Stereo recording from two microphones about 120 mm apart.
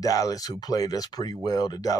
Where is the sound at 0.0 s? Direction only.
30° left (ahead or behind).